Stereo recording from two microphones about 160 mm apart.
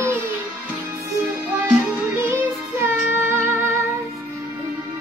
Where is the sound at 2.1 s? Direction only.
15° right (ahead or behind).